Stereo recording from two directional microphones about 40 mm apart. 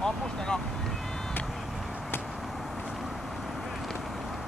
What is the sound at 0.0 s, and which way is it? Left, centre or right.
Vehicle, centre.